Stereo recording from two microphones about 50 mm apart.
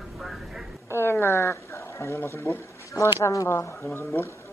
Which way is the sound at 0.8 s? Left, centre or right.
Left.